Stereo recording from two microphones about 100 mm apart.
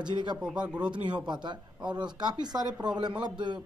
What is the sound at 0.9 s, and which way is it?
Speech, 50° right (ahead or behind).